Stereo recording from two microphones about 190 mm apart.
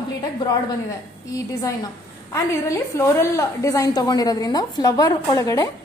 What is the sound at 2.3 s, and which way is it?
A woman's voice, 15° left (ahead or behind).